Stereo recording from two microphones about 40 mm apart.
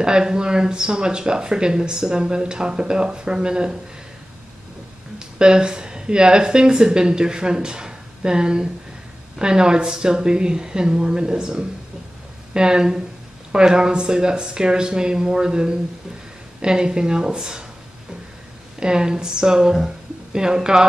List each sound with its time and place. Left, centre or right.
0.0 s speech: centre
5.4 s speech: right
18.8 s speech: centre